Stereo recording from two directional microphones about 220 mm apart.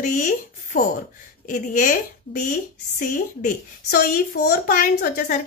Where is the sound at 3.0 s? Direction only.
40° left (ahead or behind).